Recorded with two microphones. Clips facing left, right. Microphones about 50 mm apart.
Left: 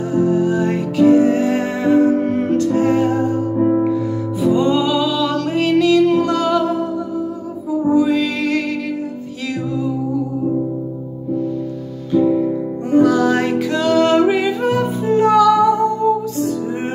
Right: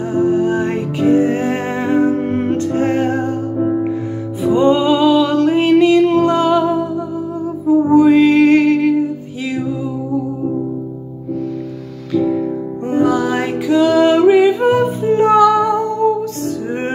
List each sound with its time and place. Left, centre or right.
0.1 s music: right
4.4 s music: right
7.6 s music: right
9.5 s music: centre
12.1 s music: right
12.8 s music: right
14.6 s music: right